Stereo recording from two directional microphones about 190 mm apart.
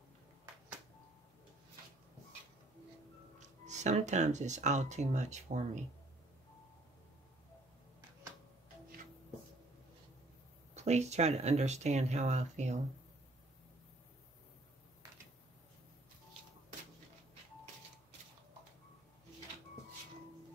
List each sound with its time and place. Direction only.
3.3 s speech: 40° right (ahead or behind)
10.7 s speech: 35° right (ahead or behind)